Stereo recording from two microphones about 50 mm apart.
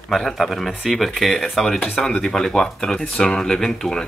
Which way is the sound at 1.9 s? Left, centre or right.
Centre.